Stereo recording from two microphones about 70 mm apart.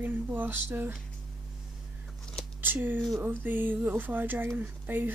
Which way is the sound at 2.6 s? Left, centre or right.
Right.